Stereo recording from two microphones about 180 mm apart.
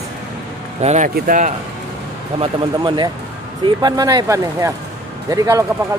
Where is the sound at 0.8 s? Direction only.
40° right (ahead or behind).